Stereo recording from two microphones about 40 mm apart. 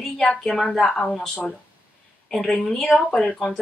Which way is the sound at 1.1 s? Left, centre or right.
Centre.